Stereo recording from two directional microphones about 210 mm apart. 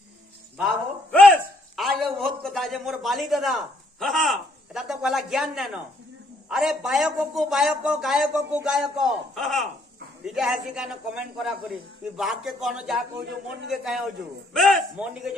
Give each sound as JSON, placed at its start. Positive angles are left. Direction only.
{"t": 0.6, "sound": "a man's voice", "side_deg": 0}